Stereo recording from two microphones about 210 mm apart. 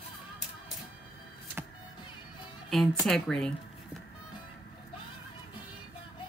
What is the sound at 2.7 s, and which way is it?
Speech, centre (ahead or behind).